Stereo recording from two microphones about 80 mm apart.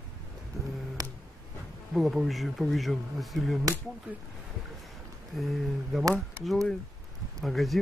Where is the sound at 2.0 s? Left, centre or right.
Centre.